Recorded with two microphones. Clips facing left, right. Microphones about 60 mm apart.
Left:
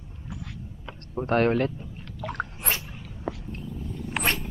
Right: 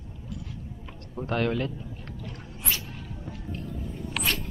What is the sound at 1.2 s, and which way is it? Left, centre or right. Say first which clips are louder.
Speech: left 5 dB; left.